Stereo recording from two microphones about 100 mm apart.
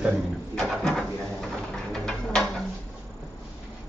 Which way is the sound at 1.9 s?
5° left (ahead or behind).